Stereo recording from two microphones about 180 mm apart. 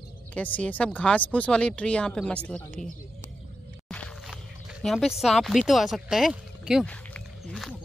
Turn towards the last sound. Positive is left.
turn(degrees=5)  # may be behind; listen again after turning